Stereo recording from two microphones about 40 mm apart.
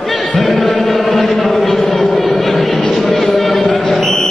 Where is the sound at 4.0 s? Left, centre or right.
Centre.